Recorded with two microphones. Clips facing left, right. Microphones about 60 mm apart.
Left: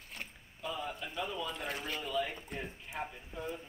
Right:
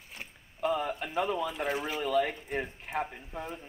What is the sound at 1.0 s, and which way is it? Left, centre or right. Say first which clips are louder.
Speech: right 8 dB; right.